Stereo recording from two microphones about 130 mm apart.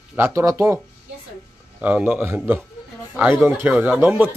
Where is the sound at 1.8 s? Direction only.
10° right (ahead or behind).